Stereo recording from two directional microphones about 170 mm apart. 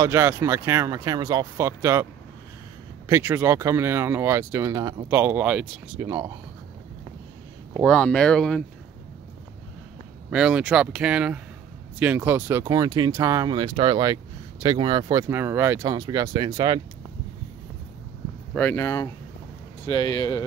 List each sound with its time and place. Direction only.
0.0 s speech: 15° right (ahead or behind)
3.1 s speech: 15° right (ahead or behind)
7.8 s speech: 5° left (ahead or behind)
10.3 s speech: 5° right (ahead or behind); by 16.8 s 25° right (ahead or behind)
18.5 s speech: 10° left (ahead or behind)